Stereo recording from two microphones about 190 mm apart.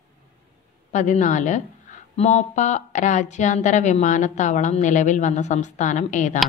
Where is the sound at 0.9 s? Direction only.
40° left (ahead or behind).